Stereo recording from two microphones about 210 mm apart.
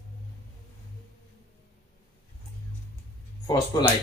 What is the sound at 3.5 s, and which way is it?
Speech, 20° left (ahead or behind).